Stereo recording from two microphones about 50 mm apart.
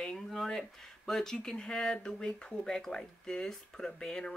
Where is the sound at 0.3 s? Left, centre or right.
Centre.